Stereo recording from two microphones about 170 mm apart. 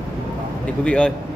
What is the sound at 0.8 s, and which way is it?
Speech, 5° left (ahead or behind).